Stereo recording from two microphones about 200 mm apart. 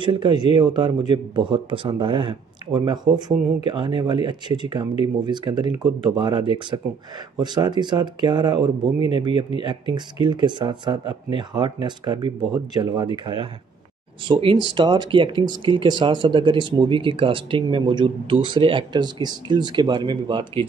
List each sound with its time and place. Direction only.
0.0 s speech: 25° right (ahead or behind)